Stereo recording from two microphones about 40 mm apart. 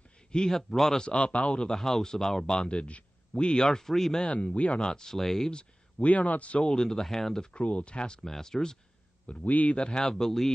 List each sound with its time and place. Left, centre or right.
0.3 s speech: centre
0.9 s speech: left
1.7 s speech: centre
2.5 s speech: left
3.6 s speech: centre
4.3 s speech: left
4.6 s speech: centre
5.9 s speech: left
6.6 s speech: centre
7.5 s speech: left
9.4 s speech: left
9.8 s speech: left
10.0 s speech: centre